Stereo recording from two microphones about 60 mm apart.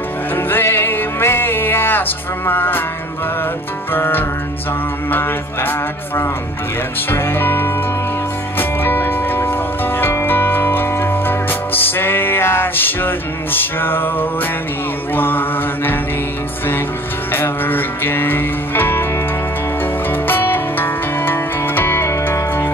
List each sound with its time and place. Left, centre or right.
0.4 s music: left
3.9 s music: left
17.3 s music: left